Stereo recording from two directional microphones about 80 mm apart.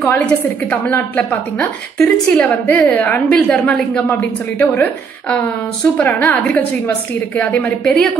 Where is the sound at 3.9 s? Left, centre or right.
Left.